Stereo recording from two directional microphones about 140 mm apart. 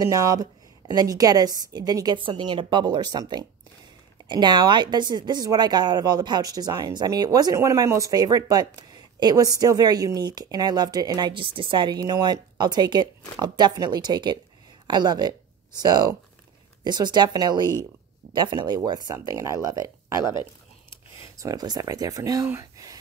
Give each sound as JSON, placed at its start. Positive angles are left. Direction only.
{"t": 0.0, "sound": "a woman's voice", "side_deg": -25}
{"t": 21.4, "sound": "a woman's voice", "side_deg": -25}